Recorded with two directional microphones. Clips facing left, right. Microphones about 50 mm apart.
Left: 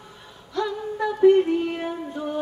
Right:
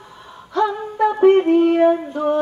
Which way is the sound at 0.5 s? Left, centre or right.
Right.